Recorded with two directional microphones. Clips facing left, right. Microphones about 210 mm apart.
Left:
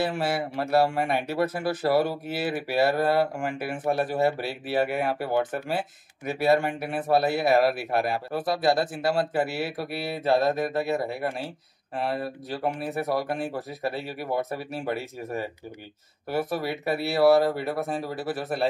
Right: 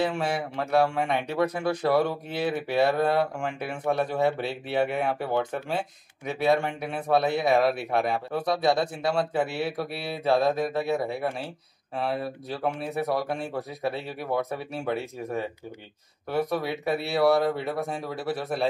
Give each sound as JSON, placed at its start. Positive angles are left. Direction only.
{"t": 0.0, "sound": "a man's voice", "side_deg": 5}